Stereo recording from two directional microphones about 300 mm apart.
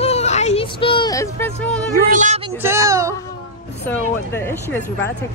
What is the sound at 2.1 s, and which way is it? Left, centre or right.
Speech, right.